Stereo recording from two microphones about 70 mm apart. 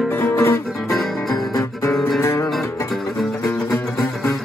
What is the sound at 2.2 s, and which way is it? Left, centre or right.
Music, left.